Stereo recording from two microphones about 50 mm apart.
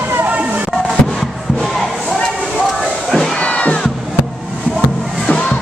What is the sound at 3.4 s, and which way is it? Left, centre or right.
Crowd, left.